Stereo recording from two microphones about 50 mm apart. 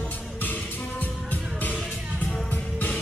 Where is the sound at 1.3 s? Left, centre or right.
Left.